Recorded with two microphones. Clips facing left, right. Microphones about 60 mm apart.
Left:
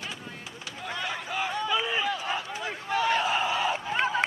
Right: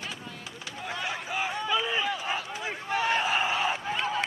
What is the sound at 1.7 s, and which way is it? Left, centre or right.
Run, centre.